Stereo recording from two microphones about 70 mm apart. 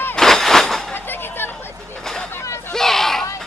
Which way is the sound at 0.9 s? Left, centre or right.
Left.